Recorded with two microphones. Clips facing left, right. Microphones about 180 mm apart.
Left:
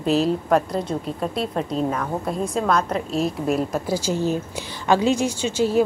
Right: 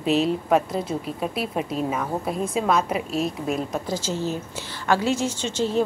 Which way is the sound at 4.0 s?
15° left (ahead or behind).